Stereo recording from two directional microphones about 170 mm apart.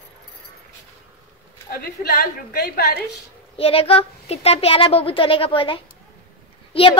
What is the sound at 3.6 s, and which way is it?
Speech, 35° left (ahead or behind).